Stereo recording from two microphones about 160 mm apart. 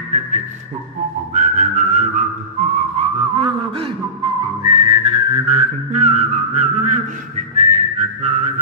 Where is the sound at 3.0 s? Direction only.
35° right (ahead or behind).